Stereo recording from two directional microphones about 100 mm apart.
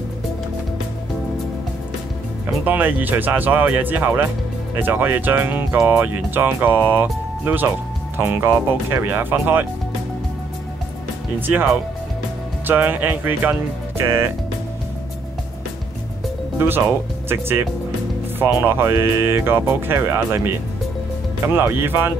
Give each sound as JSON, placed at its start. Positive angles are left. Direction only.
{"t": 2.6, "sound": "speech", "side_deg": -15}
{"t": 8.9, "sound": "speech", "side_deg": -20}
{"t": 11.3, "sound": "speech", "side_deg": -20}
{"t": 16.5, "sound": "speech", "side_deg": -20}
{"t": 21.5, "sound": "speech", "side_deg": -20}